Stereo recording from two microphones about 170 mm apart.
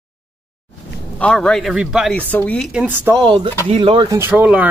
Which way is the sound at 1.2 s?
5° left (ahead or behind).